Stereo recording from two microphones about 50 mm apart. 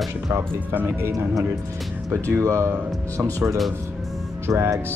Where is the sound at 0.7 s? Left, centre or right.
Right.